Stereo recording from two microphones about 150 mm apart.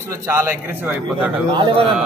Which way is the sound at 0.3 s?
15° right (ahead or behind).